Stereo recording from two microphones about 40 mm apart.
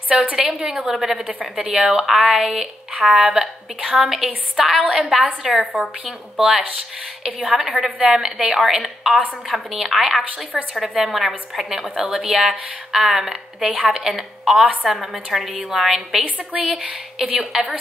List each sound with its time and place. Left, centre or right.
0.1 s a woman's voice: right
0.9 s speech: centre
1.6 s a woman's voice: right
1.9 s speech: centre